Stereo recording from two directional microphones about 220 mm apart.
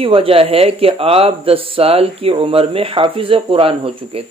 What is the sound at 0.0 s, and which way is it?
Speech, 25° right (ahead or behind).